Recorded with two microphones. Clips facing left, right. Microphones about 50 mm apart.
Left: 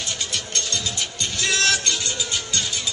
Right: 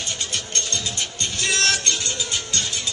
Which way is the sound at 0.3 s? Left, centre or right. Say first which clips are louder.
Even; right.